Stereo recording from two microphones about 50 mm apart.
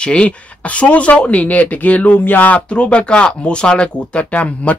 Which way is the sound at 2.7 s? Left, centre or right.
Left.